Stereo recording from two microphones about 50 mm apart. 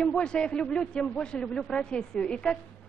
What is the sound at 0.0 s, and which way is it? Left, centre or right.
A man's voice, centre.